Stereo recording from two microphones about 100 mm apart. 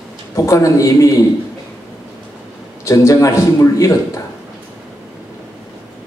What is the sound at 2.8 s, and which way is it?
A man's voice, 30° left (ahead or behind).